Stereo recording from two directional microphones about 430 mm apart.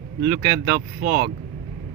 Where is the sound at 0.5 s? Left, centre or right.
Right.